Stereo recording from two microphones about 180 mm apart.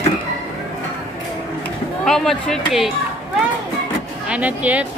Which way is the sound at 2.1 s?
Centre (ahead or behind).